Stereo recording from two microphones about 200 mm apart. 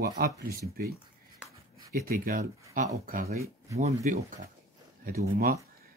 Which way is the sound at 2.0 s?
45° right (ahead or behind).